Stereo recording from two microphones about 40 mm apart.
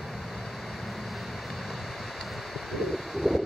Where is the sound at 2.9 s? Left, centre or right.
Centre.